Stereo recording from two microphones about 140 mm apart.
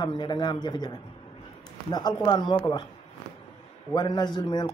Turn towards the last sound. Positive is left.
turn(degrees=30)  # may be behind; listen again after turning